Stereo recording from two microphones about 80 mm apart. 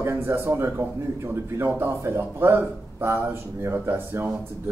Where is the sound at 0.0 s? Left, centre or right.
Right.